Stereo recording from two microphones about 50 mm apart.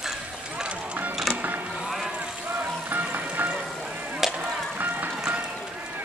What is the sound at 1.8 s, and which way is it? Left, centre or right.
Vehicle, centre.